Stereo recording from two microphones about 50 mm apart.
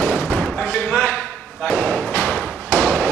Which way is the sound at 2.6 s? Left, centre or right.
Left.